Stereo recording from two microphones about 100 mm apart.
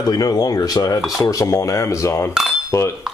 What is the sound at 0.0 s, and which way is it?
Speech, 40° left (ahead or behind).